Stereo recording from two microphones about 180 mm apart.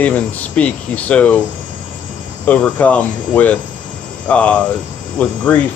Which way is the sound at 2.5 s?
5° left (ahead or behind).